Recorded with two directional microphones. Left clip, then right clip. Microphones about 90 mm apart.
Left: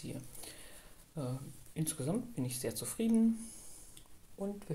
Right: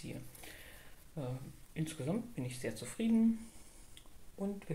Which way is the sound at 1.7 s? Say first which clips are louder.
Left 1 dB; 30° left (ahead or behind).